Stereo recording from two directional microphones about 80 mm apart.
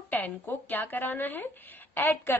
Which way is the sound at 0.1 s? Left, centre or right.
Left.